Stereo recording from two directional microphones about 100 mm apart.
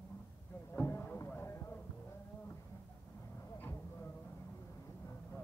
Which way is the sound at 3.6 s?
20° left (ahead or behind).